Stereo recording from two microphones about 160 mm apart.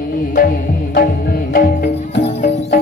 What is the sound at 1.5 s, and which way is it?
Music, 65° left (ahead or behind).